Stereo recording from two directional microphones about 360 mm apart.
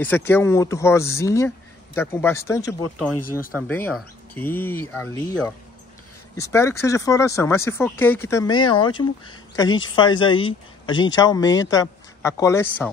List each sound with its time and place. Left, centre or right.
0.0 s speech: centre
3.3 s speech: left
3.5 s speech: centre